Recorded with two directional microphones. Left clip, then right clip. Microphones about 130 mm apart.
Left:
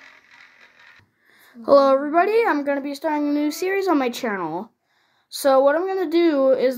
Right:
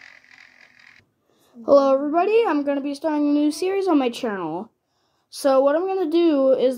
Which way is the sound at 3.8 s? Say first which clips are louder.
Right 1 dB; 30° right (ahead or behind).